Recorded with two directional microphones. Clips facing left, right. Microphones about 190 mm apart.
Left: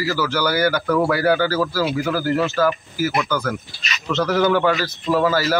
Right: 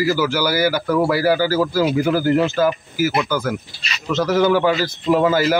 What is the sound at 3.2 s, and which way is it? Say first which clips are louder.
A man's voice: right 2 dB; 5° right (ahead or behind).